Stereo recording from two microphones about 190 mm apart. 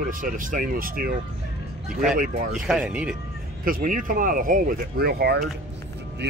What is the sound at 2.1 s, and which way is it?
Speech, 45° right (ahead or behind).